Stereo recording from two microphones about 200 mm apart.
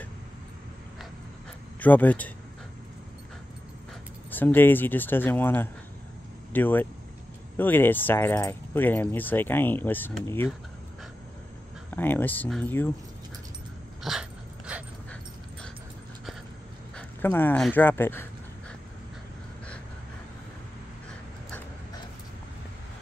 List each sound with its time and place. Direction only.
1.8 s speech: 10° left (ahead or behind)
4.3 s speech: 10° left (ahead or behind)
11.9 s speech: 10° left (ahead or behind)
14.0 s dog: centre (ahead or behind)
16.9 s speech: 10° left (ahead or behind)